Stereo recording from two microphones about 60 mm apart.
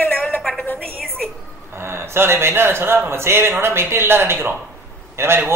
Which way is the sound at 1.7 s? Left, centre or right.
Right.